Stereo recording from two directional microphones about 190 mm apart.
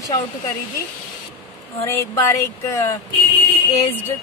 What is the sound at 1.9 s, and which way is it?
Speech, 15° left (ahead or behind).